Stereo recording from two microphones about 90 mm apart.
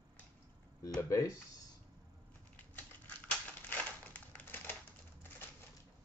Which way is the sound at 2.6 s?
20° left (ahead or behind).